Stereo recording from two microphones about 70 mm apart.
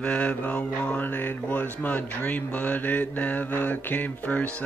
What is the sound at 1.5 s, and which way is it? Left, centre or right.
Speech, left.